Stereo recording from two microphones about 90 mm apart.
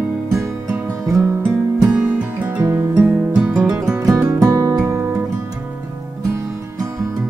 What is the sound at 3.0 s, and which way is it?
Music, 10° right (ahead or behind).